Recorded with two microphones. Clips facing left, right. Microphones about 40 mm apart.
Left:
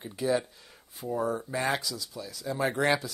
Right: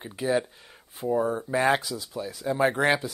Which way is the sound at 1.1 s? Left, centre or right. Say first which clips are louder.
Right 3 dB; centre.